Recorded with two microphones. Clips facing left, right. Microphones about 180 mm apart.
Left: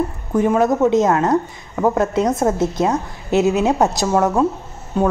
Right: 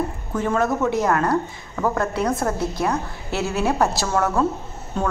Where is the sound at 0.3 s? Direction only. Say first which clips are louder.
Left 6 dB; 15° left (ahead or behind).